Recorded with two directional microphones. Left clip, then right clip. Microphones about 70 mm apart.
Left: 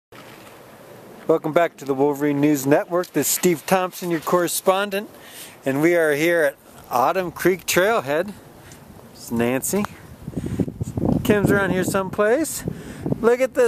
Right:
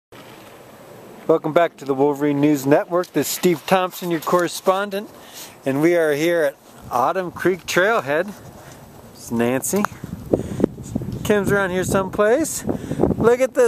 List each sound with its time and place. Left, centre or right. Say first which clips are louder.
1.2 s speech: right 2 dB; centre
4.4 s speech: left 1 dB; left
5.6 s speech: right 1 dB; centre
6.9 s speech: even; left
9.3 s speech: right 1 dB; centre
11.2 s speech: right 1 dB; centre